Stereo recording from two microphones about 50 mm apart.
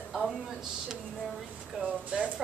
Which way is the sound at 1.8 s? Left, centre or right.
Right.